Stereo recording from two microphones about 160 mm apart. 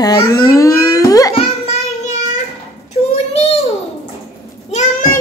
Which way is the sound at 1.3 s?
40° left (ahead or behind).